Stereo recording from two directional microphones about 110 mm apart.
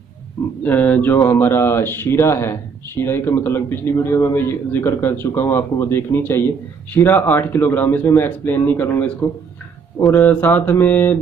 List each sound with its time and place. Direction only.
0.7 s speech: 15° left (ahead or behind)